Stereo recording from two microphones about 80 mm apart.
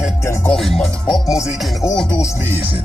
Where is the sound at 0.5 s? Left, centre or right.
Centre.